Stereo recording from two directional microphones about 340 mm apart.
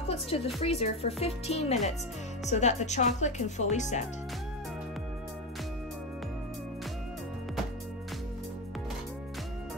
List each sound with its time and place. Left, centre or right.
0.1 s speech: centre